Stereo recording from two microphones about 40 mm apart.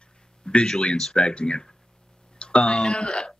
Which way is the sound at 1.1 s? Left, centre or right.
Left.